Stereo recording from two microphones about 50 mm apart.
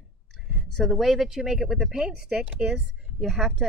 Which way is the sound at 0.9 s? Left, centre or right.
Centre.